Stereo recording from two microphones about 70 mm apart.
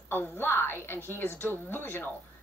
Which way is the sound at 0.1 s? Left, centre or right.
Left.